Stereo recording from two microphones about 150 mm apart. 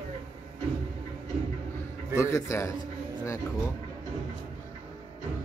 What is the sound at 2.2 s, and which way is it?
A man's voice, 20° left (ahead or behind).